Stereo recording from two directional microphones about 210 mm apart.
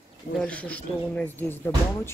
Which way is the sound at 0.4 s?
5° left (ahead or behind).